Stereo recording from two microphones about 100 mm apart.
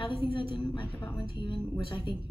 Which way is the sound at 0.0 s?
60° left (ahead or behind).